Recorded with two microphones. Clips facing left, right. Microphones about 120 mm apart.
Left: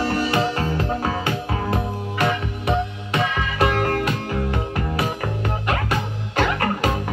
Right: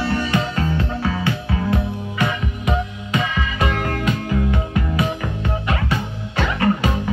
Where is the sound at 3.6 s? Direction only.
45° left (ahead or behind).